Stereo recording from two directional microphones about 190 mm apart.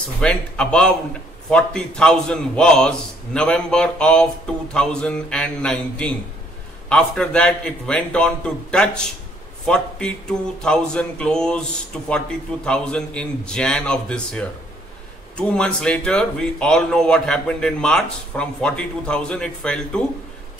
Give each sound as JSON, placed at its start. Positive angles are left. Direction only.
{"t": 0.2, "sound": "speech", "side_deg": 5}
{"t": 12.6, "sound": "speech", "side_deg": 5}